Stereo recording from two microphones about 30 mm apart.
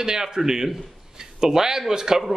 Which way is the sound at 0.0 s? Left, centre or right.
Centre.